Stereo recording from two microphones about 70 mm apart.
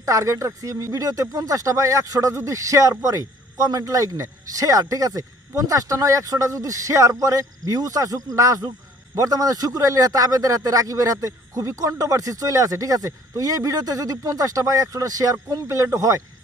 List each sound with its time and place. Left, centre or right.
0.0 s a man's voice: right